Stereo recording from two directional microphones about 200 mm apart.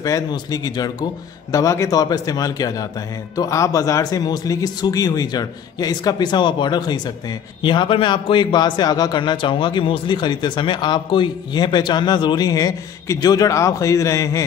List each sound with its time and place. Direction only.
0.0 s a man's voice: 15° left (ahead or behind)